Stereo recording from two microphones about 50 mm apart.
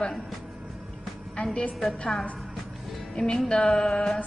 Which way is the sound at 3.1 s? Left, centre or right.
Centre.